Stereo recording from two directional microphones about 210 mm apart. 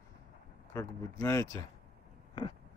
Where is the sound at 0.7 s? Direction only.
15° left (ahead or behind).